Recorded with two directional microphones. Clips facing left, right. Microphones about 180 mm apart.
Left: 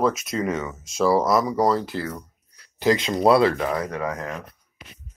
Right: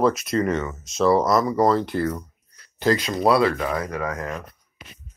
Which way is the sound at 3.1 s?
25° left (ahead or behind).